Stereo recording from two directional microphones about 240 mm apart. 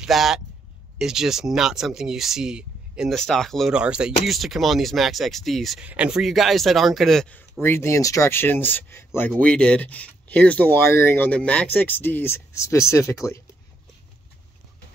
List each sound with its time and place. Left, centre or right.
0.0 s speech: centre